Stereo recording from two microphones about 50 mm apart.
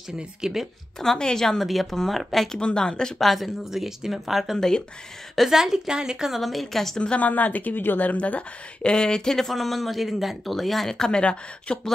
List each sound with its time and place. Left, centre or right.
0.2 s a woman's voice: centre
0.9 s a woman's voice: centre
3.2 s speech: centre
4.6 s a woman's voice: centre
5.5 s a woman's voice: centre
7.0 s a woman's voice: left